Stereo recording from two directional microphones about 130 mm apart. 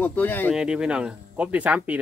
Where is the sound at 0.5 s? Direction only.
5° right (ahead or behind).